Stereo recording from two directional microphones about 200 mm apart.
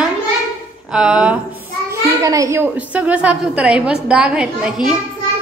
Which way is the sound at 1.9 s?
15° right (ahead or behind).